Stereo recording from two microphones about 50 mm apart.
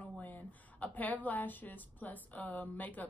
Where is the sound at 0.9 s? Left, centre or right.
Left.